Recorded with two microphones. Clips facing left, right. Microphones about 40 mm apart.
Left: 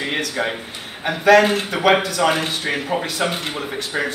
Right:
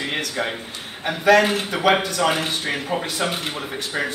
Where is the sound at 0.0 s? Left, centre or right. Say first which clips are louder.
Left 2 dB; centre.